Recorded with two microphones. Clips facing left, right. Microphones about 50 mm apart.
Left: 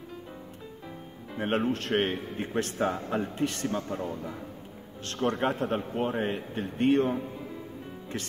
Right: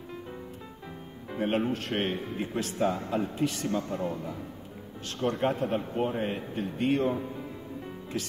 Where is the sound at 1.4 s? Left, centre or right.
Left.